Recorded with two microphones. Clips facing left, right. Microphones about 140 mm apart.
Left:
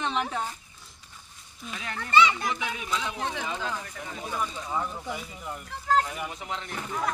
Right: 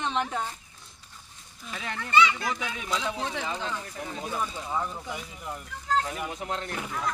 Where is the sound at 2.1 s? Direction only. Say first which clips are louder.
Left 1 dB; 30° left (ahead or behind).